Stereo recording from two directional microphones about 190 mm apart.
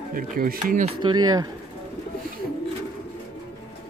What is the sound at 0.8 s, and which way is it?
Speech, 25° right (ahead or behind).